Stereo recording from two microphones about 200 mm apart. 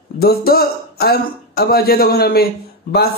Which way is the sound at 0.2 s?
50° left (ahead or behind).